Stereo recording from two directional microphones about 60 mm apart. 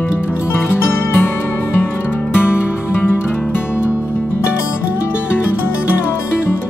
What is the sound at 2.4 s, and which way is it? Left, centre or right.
Music, left.